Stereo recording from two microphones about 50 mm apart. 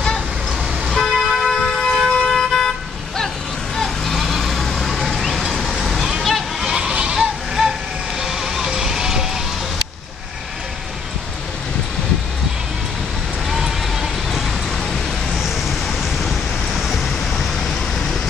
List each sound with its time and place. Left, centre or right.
0.8 s vehicle: centre
3.7 s vehicle: centre
6.6 s a sound: centre
7.2 s music: centre
13.5 s vehicle: centre
15.3 s vehicle: centre
16.0 s a sound: centre